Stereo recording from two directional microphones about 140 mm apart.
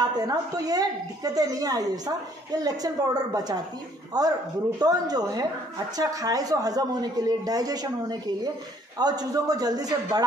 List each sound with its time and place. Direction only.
0.0 s a woman's voice: 30° right (ahead or behind)